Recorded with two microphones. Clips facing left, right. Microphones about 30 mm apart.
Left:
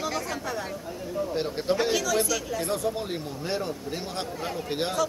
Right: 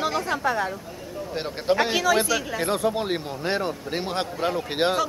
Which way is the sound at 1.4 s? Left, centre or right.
Right.